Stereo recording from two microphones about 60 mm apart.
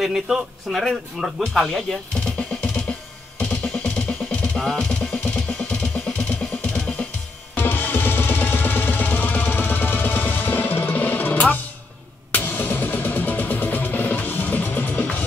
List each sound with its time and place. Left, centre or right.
0.0 s a man's voice: centre
1.9 s drum: centre
3.3 s music: centre
4.6 s music: centre
6.6 s drum: centre
7.5 s music: left